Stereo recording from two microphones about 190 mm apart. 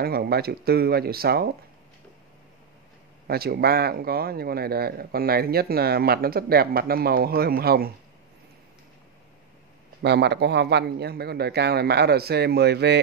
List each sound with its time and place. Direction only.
0.0 s a man's voice: 55° right (ahead or behind)
3.3 s speech: 55° right (ahead or behind)
10.0 s a man's voice: 60° right (ahead or behind)